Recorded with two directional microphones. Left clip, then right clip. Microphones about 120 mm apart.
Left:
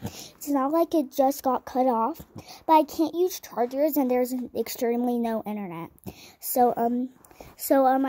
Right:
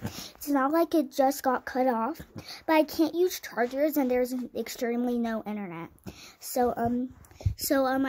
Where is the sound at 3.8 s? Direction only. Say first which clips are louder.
Left 3 dB; 50° left (ahead or behind).